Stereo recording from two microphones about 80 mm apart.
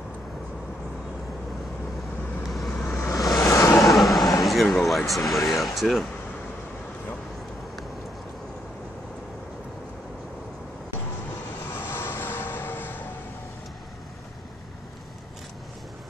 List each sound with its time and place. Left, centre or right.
2.4 s vehicle: centre
3.1 s a sound: centre
3.8 s vehicle: centre
4.4 s speech: centre
11.6 s vehicle: left